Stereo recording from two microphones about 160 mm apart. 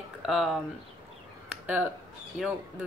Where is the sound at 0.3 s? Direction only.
Centre (ahead or behind).